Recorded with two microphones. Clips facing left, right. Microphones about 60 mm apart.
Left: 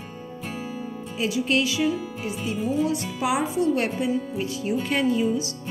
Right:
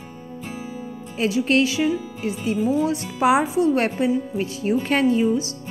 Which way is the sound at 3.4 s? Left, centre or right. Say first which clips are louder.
Right 3 dB; right.